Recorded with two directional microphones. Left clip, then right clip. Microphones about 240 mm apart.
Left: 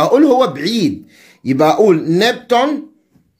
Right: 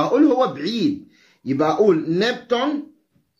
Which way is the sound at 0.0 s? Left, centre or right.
Left.